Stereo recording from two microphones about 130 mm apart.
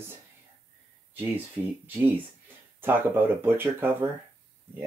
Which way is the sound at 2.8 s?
15° right (ahead or behind).